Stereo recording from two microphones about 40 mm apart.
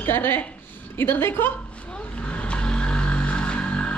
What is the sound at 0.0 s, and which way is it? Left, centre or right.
Speech, left.